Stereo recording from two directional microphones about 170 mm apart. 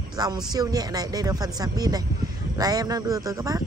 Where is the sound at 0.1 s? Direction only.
25° right (ahead or behind).